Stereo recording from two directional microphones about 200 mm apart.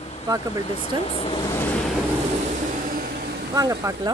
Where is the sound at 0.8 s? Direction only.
30° left (ahead or behind).